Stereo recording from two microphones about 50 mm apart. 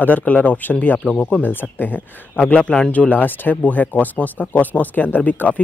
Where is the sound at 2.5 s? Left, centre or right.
Centre.